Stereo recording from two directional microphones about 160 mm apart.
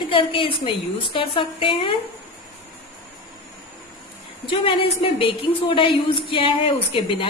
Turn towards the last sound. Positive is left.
turn(degrees=30)  # may be behind; listen again after turning